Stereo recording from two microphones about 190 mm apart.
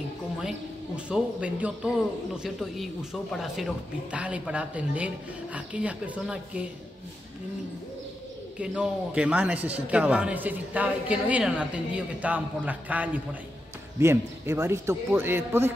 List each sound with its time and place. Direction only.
0.4 s speech: 5° right (ahead or behind)
8.5 s a man's voice: 5° right (ahead or behind)